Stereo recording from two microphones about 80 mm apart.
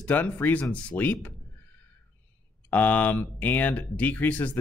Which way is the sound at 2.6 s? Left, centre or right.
Left.